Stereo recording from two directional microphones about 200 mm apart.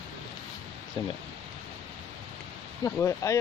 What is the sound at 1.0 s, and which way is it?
Speech, 25° left (ahead or behind).